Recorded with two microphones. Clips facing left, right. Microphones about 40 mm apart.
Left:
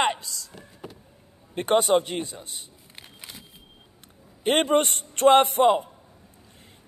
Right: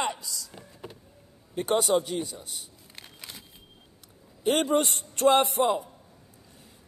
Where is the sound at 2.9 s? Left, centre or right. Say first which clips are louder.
Left 1 dB; centre.